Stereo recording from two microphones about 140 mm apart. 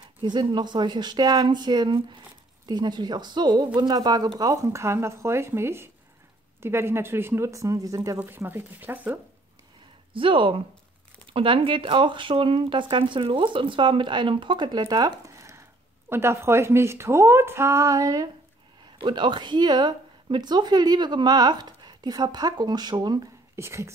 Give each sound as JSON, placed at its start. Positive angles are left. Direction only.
{"t": 0.2, "sound": "a woman's voice", "side_deg": -35}
{"t": 10.1, "sound": "a woman's voice", "side_deg": -40}
{"t": 23.5, "sound": "speech", "side_deg": -20}